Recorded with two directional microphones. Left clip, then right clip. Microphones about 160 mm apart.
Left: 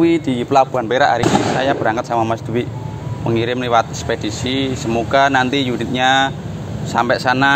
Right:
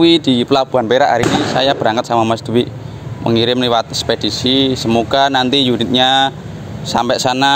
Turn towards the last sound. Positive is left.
turn(degrees=-90)